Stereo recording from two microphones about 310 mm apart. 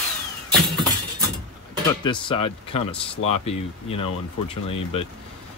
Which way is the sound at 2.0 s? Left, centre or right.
Centre.